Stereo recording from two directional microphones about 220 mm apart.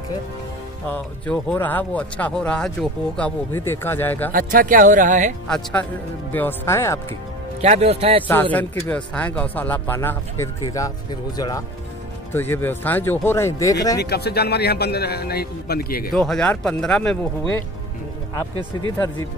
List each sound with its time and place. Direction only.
0.8 s speech: 5° left (ahead or behind)
4.3 s speech: 40° right (ahead or behind)
6.3 s speech: 10° left (ahead or behind)
7.6 s speech: 30° right (ahead or behind)
8.2 s speech: 10° left (ahead or behind)
14.0 s a man's voice: 45° left (ahead or behind)
16.1 s speech: centre (ahead or behind)